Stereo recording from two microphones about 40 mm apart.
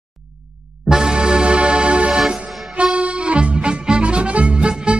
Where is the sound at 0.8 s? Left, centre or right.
Centre.